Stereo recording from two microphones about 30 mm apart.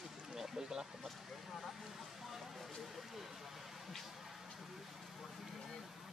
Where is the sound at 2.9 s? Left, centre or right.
Centre.